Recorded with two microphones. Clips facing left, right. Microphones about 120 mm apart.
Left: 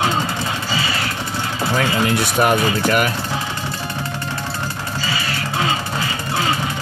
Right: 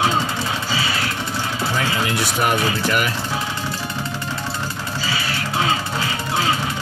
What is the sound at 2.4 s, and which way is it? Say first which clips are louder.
Speech: left 4 dB; 50° left (ahead or behind).